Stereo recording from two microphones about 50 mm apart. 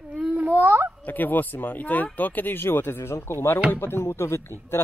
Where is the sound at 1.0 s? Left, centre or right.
Left.